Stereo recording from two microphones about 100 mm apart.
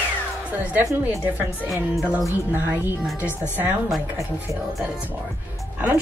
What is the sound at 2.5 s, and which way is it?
Speech, 20° right (ahead or behind).